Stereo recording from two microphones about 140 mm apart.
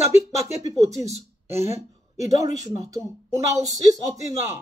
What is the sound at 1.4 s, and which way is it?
Speech, 20° right (ahead or behind).